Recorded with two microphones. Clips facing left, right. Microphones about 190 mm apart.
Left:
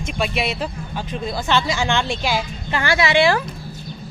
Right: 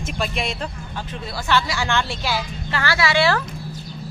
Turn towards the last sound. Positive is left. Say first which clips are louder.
# left 3 dB
turn(degrees=15)  # may be behind; listen again after turning